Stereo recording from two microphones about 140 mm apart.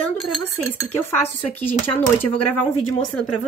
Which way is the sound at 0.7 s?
15° left (ahead or behind).